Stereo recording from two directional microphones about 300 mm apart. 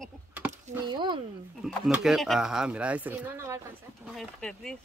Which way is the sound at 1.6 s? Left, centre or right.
Centre.